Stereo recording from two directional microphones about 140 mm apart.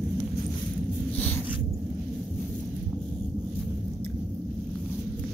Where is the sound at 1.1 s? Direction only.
10° left (ahead or behind).